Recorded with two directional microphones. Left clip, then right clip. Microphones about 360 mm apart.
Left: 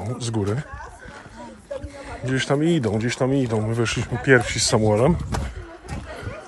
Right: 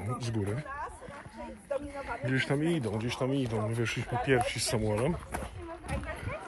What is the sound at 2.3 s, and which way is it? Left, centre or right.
Speech, centre.